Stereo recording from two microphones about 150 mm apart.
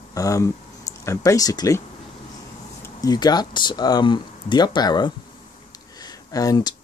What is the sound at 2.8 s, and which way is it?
Speech, 25° left (ahead or behind).